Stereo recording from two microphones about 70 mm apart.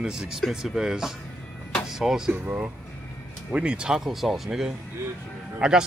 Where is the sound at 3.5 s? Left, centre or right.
Centre.